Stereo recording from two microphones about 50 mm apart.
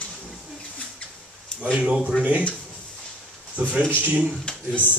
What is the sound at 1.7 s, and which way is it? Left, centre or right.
Speech, right.